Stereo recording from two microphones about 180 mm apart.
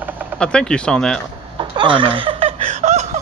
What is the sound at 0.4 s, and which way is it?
Speech, 5° left (ahead or behind).